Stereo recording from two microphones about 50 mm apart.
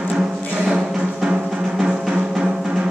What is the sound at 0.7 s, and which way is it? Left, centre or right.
Music, centre.